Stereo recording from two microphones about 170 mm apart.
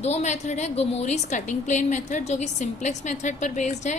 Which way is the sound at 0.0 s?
40° left (ahead or behind).